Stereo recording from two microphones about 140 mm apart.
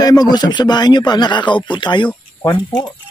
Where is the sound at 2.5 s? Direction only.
35° left (ahead or behind).